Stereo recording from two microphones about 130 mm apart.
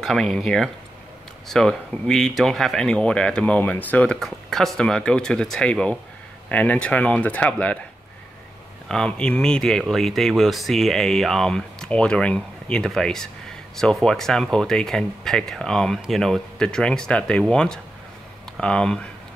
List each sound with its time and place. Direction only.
0.0 s speech: 5° left (ahead or behind)
8.8 s speech: 5° left (ahead or behind)